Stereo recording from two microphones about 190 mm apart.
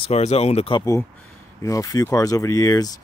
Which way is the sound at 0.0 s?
35° left (ahead or behind).